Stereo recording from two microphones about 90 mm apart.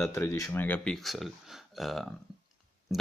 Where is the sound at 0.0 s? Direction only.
30° left (ahead or behind).